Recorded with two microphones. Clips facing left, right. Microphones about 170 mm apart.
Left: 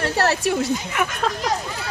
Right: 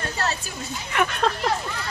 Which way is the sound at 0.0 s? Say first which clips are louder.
Left 8 dB; 75° left (ahead or behind).